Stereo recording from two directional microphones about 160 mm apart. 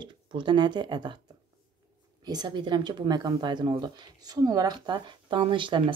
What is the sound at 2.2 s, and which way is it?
Speech, 25° right (ahead or behind).